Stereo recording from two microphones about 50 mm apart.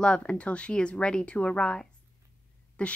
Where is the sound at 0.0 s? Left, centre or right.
Centre.